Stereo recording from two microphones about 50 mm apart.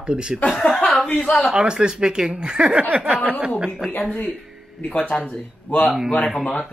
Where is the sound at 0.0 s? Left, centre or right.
Centre.